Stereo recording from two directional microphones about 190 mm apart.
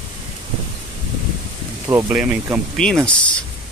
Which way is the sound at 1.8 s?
15° right (ahead or behind).